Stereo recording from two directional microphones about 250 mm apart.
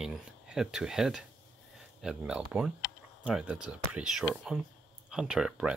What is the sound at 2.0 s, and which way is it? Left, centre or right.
Speech, centre.